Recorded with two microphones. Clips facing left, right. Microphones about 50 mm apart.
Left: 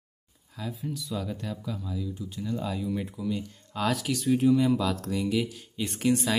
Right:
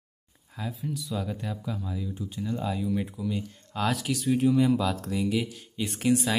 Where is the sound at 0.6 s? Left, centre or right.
Centre.